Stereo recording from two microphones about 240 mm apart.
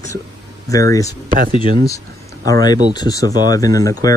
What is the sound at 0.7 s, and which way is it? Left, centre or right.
Speech, centre.